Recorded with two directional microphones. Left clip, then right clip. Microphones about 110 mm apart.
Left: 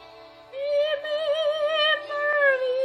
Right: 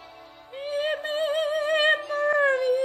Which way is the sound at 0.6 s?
45° right (ahead or behind).